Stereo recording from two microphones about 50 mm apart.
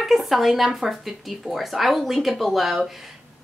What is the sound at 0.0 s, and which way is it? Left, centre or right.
A woman's voice, centre.